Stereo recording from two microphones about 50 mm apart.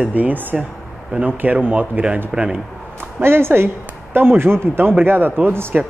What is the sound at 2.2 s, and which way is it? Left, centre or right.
Speech, centre.